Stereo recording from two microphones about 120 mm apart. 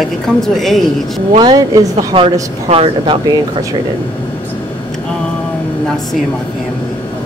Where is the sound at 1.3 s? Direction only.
35° right (ahead or behind).